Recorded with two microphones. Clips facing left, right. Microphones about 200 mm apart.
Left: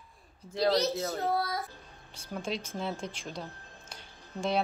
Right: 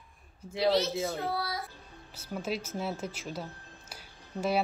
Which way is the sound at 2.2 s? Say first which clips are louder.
Right 1 dB; 5° right (ahead or behind).